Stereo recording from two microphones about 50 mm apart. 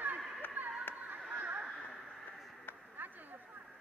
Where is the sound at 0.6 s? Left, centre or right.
Right.